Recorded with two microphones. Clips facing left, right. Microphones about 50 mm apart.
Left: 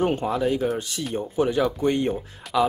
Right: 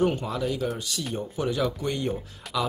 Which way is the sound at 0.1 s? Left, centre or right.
Left.